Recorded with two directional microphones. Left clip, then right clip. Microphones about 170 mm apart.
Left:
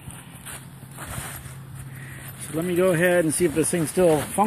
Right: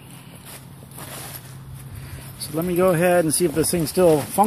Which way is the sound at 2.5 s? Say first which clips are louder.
Right 2 dB; 15° right (ahead or behind).